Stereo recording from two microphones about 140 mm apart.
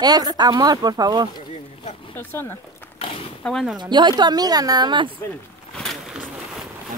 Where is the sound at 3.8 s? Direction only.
35° right (ahead or behind).